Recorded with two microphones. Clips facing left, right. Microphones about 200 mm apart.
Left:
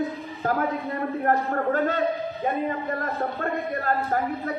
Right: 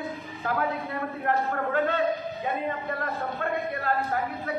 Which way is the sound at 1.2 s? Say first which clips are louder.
Left 3 dB; 40° left (ahead or behind).